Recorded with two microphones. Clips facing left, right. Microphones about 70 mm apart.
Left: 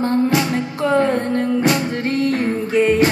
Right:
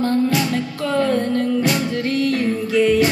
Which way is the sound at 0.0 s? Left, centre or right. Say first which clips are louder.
Left 1 dB; left.